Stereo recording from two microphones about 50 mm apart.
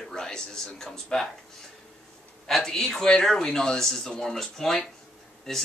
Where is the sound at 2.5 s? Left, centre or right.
Centre.